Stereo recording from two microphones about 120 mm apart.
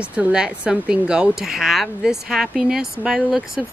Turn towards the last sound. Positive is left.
turn(degrees=-5)  # may be behind; listen again after turning